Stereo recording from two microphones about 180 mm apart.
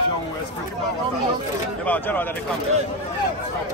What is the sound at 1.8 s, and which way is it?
Speech, 10° left (ahead or behind).